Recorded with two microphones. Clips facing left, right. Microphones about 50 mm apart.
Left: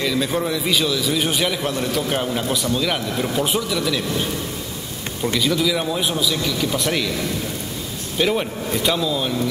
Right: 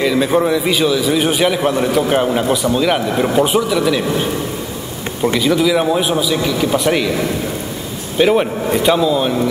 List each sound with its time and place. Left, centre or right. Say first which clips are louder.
0.0 s a man's voice: right 7 dB; centre